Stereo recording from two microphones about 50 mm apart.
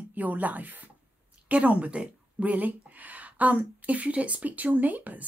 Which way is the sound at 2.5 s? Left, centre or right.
Right.